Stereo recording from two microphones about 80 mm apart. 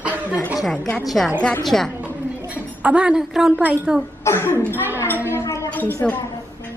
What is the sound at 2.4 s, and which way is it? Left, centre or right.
A woman's voice, centre.